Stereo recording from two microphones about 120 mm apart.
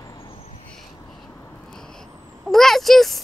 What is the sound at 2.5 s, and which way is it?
Speech, centre (ahead or behind).